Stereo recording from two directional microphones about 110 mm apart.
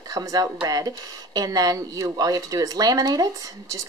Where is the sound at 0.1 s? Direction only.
35° right (ahead or behind).